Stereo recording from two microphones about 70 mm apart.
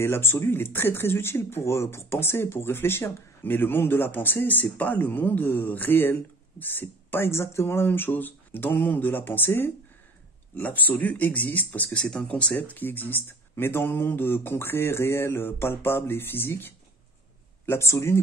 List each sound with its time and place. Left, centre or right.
0.0 s speech: left